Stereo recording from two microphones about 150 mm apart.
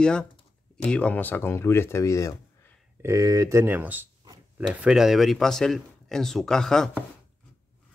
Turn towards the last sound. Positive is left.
turn(degrees=5)  # may be behind; listen again after turning